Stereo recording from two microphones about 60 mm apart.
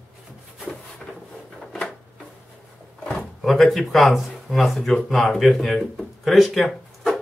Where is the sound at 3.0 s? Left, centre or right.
Centre.